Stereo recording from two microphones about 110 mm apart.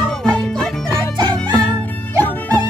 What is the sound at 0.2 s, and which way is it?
Music, 5° left (ahead or behind).